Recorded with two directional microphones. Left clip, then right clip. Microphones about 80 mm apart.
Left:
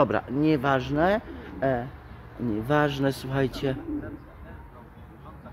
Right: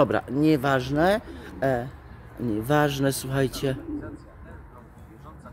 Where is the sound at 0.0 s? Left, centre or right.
Right.